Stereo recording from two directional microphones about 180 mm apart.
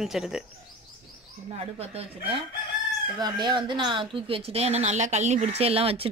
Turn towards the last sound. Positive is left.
turn(degrees=-35)  # may be behind; listen again after turning